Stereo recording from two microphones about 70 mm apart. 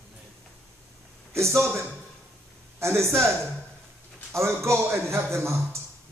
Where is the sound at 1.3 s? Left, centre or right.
Right.